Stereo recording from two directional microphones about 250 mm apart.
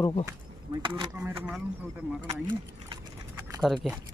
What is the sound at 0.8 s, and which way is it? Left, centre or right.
Speech, centre.